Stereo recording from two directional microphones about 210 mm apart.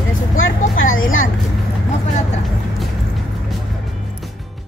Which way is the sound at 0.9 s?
70° left (ahead or behind).